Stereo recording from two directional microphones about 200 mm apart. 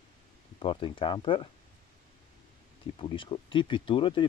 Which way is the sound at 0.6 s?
25° left (ahead or behind).